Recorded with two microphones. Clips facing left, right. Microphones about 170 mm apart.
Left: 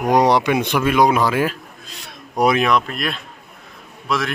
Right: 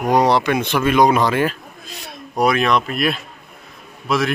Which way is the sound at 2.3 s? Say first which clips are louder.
Even; 20° left (ahead or behind).